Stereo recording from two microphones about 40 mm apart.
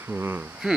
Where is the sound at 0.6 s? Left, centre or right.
Centre.